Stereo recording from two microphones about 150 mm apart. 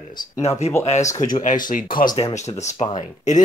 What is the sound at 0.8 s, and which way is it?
Speech, 50° left (ahead or behind).